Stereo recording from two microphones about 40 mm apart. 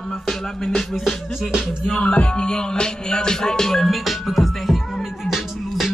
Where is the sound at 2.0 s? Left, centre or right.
Left.